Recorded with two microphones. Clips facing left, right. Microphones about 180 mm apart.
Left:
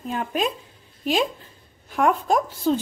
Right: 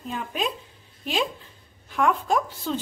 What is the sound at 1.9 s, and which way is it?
Speech, 45° left (ahead or behind).